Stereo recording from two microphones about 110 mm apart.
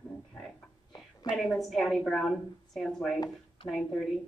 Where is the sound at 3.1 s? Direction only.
35° left (ahead or behind).